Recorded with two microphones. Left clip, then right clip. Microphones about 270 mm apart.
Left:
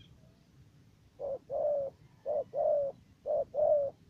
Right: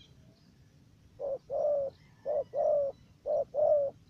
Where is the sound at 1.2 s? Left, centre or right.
Centre.